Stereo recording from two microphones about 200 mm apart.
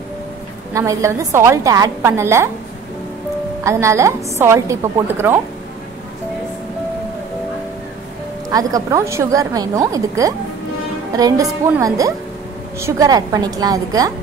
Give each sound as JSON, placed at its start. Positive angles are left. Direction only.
{"t": 0.7, "sound": "speech", "side_deg": -15}
{"t": 3.6, "sound": "speech", "side_deg": -15}
{"t": 8.5, "sound": "speech", "side_deg": -20}